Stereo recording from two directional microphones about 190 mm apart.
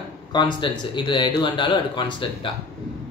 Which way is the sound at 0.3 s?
25° left (ahead or behind).